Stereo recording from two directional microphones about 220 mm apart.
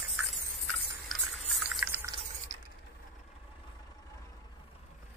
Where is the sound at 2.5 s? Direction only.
30° right (ahead or behind).